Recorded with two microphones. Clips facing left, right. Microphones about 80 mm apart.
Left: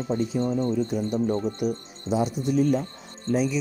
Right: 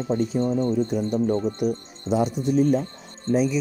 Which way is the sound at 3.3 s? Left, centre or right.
Centre.